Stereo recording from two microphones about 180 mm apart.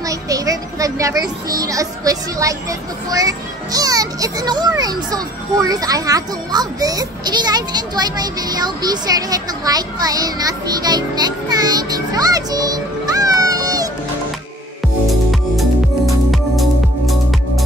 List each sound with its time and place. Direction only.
0.0 s a child's voice: 20° right (ahead or behind)
16.3 s music: centre (ahead or behind)